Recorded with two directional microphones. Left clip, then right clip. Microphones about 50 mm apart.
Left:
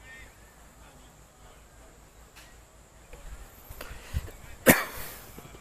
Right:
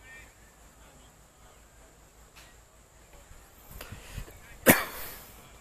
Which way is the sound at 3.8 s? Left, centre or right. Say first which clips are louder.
Left 2 dB; centre.